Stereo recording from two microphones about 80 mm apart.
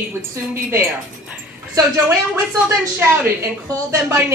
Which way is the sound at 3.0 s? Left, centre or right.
Right.